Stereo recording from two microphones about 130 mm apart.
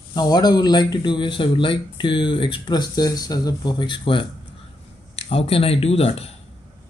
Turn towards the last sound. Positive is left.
turn(degrees=50)  # may be behind; listen again after turning